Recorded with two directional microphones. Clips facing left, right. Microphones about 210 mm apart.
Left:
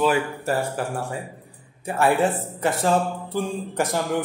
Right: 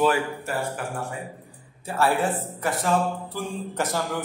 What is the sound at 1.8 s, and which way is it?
A man's voice, 20° left (ahead or behind).